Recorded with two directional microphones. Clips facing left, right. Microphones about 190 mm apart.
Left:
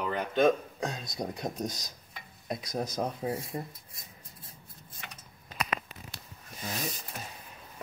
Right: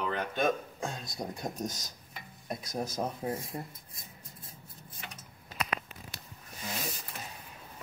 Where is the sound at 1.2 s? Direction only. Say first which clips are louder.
Left 2 dB; 15° left (ahead or behind).